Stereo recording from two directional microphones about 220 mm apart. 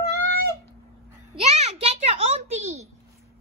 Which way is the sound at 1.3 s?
25° right (ahead or behind).